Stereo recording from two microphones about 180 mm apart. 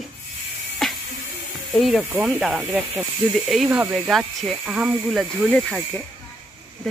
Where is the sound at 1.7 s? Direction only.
Centre (ahead or behind).